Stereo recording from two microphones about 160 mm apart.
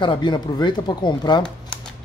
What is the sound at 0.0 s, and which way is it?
Speech, 30° left (ahead or behind).